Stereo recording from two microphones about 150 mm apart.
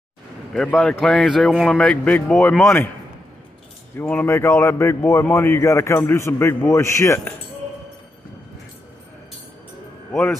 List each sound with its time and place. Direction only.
0.5 s a man's voice: 5° left (ahead or behind)
3.9 s a man's voice: 15° left (ahead or behind)